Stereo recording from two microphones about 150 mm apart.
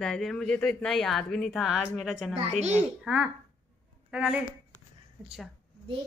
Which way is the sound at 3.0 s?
10° right (ahead or behind).